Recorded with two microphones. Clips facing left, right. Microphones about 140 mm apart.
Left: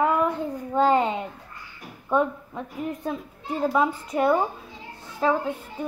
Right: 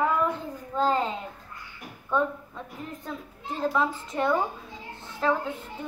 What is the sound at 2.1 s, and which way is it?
A woman's voice, 15° left (ahead or behind).